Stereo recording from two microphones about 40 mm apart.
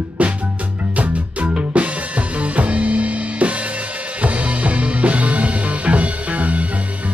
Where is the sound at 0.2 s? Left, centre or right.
Right.